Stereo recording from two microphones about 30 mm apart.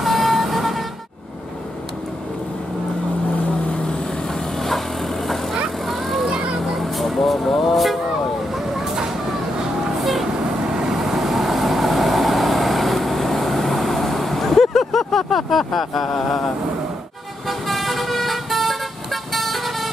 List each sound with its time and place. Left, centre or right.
0.0 s vehicle: centre
5.9 s vehicle: centre
10.9 s vehicle: centre
17.5 s vehicle: centre